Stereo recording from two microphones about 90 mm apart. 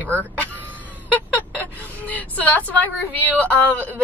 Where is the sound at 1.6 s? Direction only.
20° left (ahead or behind).